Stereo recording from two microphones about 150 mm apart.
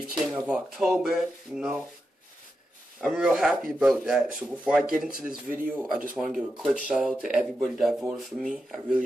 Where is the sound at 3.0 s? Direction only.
5° right (ahead or behind).